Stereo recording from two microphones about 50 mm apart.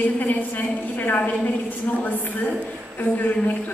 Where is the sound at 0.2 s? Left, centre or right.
Left.